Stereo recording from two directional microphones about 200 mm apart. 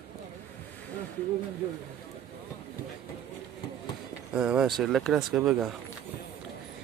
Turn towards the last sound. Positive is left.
turn(degrees=-5)  # may be behind; listen again after turning